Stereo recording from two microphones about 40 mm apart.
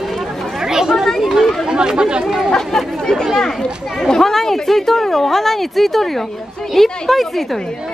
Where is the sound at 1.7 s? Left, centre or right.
Centre.